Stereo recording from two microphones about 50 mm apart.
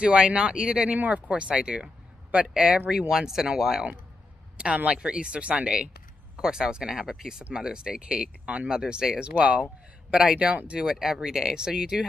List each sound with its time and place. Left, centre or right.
0.0 s speech: right
0.8 s speech: right
1.3 s speech: centre
4.6 s speech: right
10.4 s speech: right
10.9 s speech: centre